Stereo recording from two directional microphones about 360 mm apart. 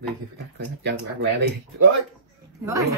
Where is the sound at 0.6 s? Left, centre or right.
Right.